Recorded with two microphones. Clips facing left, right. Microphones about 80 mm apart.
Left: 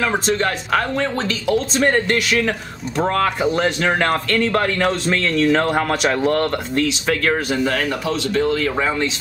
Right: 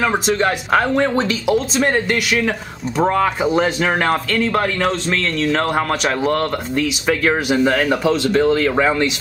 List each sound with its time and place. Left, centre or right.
0.4 s speech: right
1.8 s speech: centre
7.6 s speech: right